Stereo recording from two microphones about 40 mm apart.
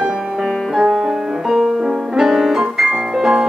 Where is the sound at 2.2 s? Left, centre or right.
Centre.